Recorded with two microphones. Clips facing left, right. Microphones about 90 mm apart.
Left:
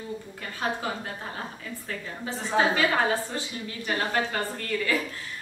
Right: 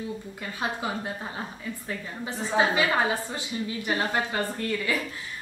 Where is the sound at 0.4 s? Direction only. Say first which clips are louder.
Left 1 dB; 15° right (ahead or behind).